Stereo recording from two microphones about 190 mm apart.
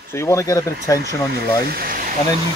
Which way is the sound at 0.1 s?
15° left (ahead or behind).